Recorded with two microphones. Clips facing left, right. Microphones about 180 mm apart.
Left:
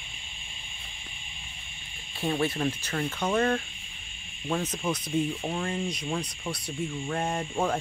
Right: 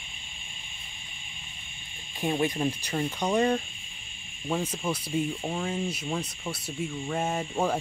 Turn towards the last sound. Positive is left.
turn(degrees=-5)  # may be behind; listen again after turning